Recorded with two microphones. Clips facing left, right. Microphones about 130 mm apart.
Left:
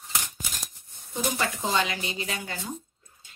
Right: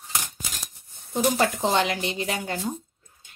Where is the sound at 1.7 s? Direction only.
65° right (ahead or behind).